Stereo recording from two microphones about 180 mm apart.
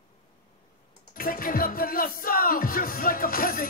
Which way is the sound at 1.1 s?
50° left (ahead or behind).